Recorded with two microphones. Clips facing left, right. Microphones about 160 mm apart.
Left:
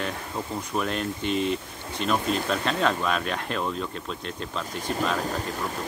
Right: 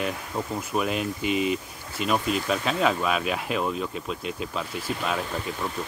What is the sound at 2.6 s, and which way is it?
Speech, 5° right (ahead or behind).